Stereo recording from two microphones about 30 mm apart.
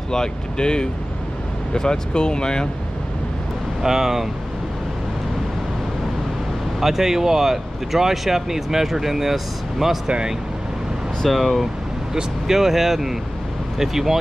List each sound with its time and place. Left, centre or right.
0.1 s speech: left
3.8 s speech: centre
6.8 s speech: centre
10.0 s speech: right
11.2 s speech: centre
12.1 s speech: centre